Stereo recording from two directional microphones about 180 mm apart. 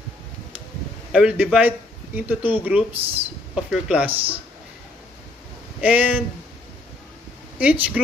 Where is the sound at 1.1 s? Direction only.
5° right (ahead or behind).